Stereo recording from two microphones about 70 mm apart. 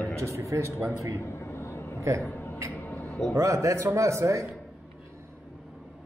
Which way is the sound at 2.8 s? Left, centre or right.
Left.